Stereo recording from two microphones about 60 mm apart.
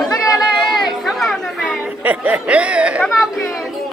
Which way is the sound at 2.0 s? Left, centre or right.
Right.